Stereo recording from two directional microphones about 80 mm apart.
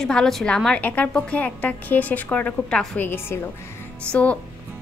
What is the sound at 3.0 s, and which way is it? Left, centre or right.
Speech, left.